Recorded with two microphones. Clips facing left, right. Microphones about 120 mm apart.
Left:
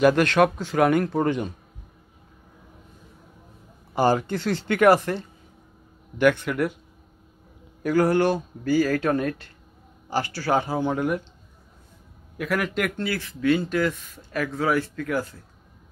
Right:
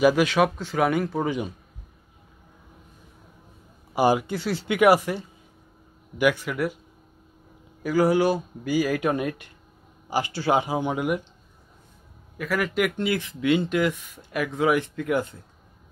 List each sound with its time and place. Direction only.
0.0 s speech: 5° right (ahead or behind)
3.9 s speech: 10° right (ahead or behind)
7.8 s speech: 5° right (ahead or behind)
12.4 s speech: centre (ahead or behind)
12.9 s speech: 20° right (ahead or behind)